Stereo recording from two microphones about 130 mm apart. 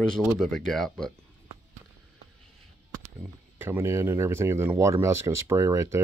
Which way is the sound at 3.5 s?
15° right (ahead or behind).